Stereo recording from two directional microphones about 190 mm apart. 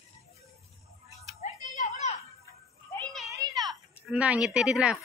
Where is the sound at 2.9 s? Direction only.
5° left (ahead or behind).